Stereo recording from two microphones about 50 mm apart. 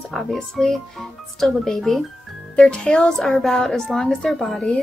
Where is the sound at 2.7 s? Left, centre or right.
Centre.